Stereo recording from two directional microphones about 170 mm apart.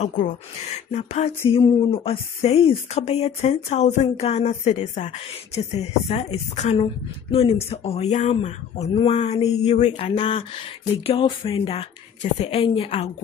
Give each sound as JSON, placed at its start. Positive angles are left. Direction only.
{"t": 0.9, "sound": "speech", "side_deg": 40}